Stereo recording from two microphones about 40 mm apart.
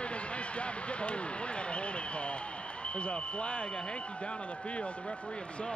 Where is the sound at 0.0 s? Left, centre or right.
Left.